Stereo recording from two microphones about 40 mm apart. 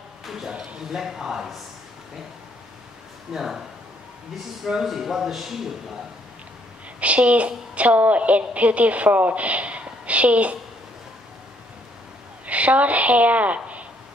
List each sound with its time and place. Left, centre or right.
0.2 s a sound: centre
0.9 s speech: centre
3.3 s speech: centre
4.8 s a man's voice: centre
7.0 s a woman's voice: right
12.4 s a woman's voice: right